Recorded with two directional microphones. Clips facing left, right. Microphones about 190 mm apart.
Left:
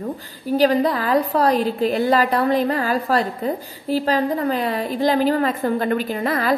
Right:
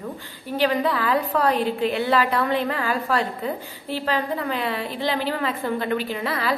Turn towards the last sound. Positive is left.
turn(degrees=45)  # may be behind; listen again after turning